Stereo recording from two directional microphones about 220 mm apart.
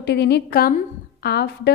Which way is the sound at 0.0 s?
50° left (ahead or behind).